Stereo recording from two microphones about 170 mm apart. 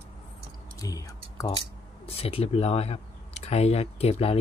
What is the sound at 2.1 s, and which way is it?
Speech, 35° left (ahead or behind).